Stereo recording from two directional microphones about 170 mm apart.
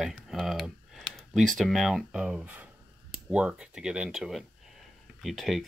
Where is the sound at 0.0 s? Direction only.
Centre (ahead or behind).